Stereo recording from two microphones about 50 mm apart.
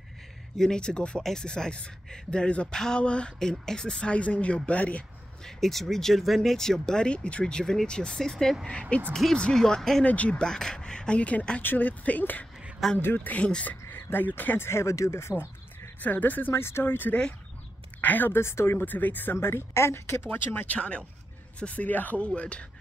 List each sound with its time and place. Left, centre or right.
0.6 s speech: centre
5.4 s speech: centre
10.0 s speech: left
10.4 s speech: centre
11.6 s speech: left
13.7 s speech: left
14.7 s speech: left
16.0 s speech: left
16.5 s speech: left
18.4 s speech: left
18.9 s speech: left
19.3 s speech: left
20.6 s speech: left